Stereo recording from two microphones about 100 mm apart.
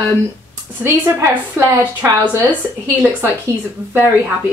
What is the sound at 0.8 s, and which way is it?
Speech, 25° right (ahead or behind).